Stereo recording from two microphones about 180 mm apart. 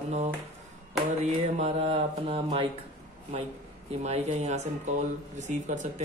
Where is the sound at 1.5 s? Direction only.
35° right (ahead or behind).